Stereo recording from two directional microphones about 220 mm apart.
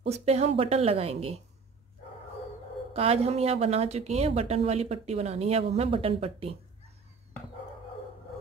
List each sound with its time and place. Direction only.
0.0 s a woman's voice: 30° right (ahead or behind)
2.9 s a woman's voice: 30° right (ahead or behind)